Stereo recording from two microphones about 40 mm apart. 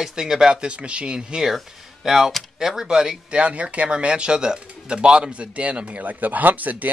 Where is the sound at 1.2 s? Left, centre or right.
Centre.